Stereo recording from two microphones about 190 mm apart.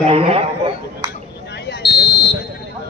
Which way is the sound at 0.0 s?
30° right (ahead or behind).